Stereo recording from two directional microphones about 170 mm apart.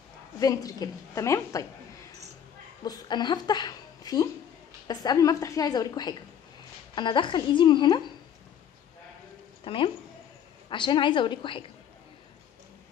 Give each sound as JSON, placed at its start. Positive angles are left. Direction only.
{"t": 0.4, "sound": "a woman's voice", "side_deg": 20}
{"t": 2.8, "sound": "a woman's voice", "side_deg": 25}
{"t": 9.7, "sound": "a woman's voice", "side_deg": 30}